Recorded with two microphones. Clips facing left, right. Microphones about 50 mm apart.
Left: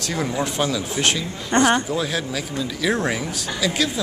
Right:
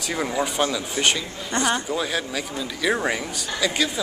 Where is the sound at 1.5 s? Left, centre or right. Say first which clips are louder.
Left 7 dB; left.